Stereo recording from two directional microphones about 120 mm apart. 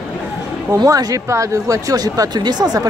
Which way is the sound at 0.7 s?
30° right (ahead or behind).